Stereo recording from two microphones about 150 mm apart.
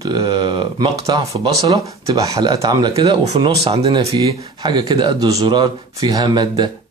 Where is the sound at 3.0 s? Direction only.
35° right (ahead or behind).